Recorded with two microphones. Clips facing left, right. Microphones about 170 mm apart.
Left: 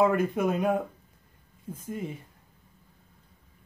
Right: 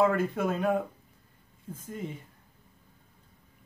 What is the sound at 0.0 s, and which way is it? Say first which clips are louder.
Speech: left 2 dB; 15° left (ahead or behind).